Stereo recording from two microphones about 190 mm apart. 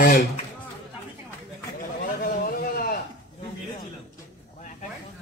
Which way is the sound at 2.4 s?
50° left (ahead or behind).